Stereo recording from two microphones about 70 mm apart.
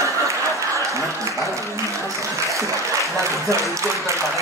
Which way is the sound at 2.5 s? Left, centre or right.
Right.